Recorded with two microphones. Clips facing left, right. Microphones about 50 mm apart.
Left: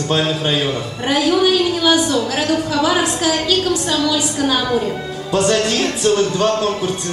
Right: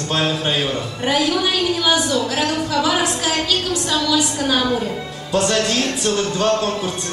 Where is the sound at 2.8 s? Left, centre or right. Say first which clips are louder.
Left 3 dB; left.